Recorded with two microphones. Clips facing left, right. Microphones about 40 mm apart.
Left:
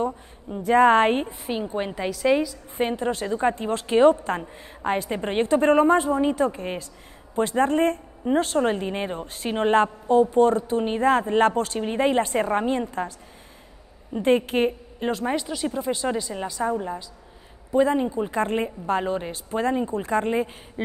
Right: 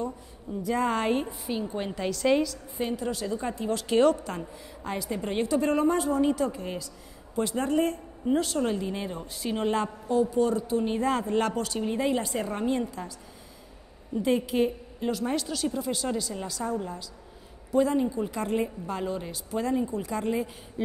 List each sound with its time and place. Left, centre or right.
0.0 s a woman's voice: left
1.4 s a woman's voice: left
2.0 s a woman's voice: centre
2.8 s a woman's voice: left
3.8 s a woman's voice: left
14.1 s a woman's voice: left
15.2 s a woman's voice: left